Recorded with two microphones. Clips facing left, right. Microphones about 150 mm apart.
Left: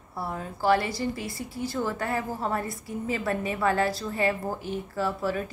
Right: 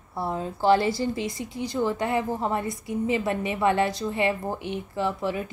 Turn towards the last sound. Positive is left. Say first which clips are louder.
# right 1 dB
turn(degrees=-20)  # may be behind; listen again after turning